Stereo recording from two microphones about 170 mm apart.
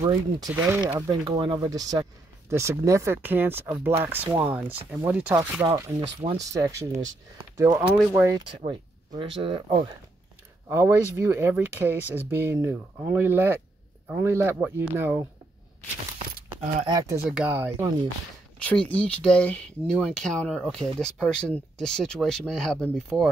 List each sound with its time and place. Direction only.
0.7 s speech: 15° right (ahead or behind)
10.7 s speech: 15° right (ahead or behind)
16.8 s speech: 20° right (ahead or behind)
17.3 s speech: 10° right (ahead or behind)
18.6 s speech: 10° left (ahead or behind)